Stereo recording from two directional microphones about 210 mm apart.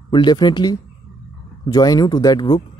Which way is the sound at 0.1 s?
20° left (ahead or behind).